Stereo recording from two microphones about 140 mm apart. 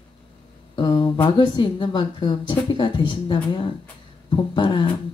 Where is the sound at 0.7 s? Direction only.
35° left (ahead or behind).